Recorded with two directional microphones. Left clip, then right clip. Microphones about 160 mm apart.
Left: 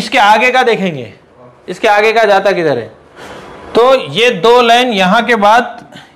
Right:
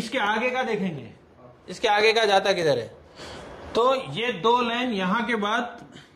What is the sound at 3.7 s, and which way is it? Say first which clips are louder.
A man's voice: left 14 dB; 35° left (ahead or behind).